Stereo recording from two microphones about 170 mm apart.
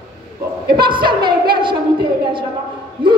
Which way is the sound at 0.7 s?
30° right (ahead or behind).